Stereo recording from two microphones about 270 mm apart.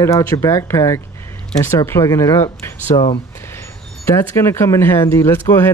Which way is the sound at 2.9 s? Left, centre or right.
Left.